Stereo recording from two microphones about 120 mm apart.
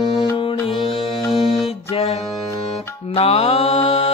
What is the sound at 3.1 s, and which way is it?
Mantra, 55° left (ahead or behind).